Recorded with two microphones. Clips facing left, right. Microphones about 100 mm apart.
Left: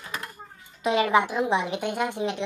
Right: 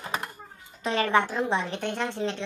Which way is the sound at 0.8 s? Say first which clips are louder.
Left 2 dB; 10° left (ahead or behind).